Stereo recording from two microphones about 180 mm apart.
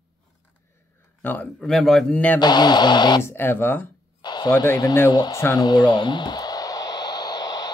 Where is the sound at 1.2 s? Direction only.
10° left (ahead or behind).